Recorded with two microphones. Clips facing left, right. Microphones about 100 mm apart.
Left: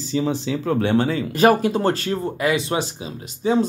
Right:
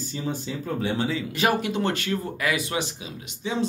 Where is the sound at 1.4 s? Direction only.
40° left (ahead or behind).